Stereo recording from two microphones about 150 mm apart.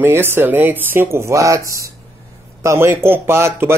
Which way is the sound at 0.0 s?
15° right (ahead or behind).